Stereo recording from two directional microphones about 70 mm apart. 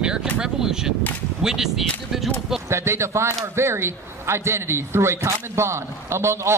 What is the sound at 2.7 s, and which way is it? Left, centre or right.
A man's voice, right.